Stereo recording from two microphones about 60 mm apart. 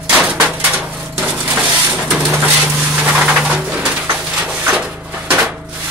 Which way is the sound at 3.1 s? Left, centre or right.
Centre.